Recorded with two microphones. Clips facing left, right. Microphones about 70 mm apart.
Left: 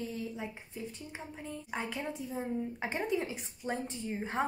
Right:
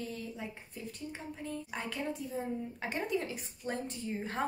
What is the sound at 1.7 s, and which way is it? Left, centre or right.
A woman's voice, left.